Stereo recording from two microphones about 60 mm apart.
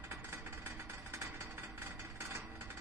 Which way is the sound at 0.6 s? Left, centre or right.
Right.